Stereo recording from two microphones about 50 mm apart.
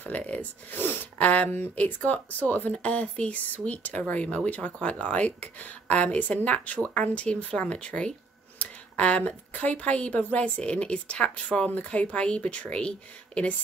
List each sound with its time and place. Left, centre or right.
0.0 s speech: left
0.7 s speech: left
1.1 s speech: left